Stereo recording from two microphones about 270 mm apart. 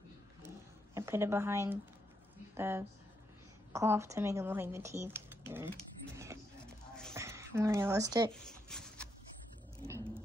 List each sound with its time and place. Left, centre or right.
0.9 s a woman's voice: centre
6.6 s music: centre
7.2 s a woman's voice: centre
8.3 s a sound: centre